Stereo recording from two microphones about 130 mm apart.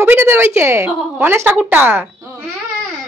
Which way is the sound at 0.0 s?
15° right (ahead or behind).